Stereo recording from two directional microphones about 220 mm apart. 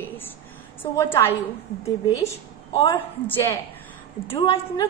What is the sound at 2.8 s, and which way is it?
A woman's voice, 15° left (ahead or behind).